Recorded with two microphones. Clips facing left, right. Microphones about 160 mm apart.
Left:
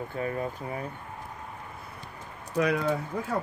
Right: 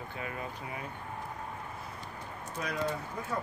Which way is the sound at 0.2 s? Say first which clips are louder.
Left 8 dB; 40° left (ahead or behind).